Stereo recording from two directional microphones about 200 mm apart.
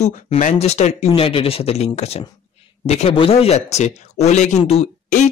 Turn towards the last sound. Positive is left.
turn(degrees=35)  # may be behind; listen again after turning